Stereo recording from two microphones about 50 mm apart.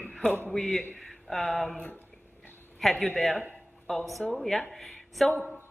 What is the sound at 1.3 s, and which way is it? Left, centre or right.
Speech, centre.